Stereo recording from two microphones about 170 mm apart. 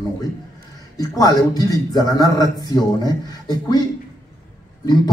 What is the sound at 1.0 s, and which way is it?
Speech, 20° left (ahead or behind).